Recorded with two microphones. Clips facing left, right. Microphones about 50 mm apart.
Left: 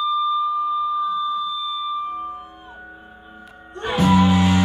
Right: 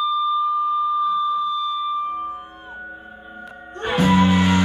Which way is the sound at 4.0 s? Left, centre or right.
Centre.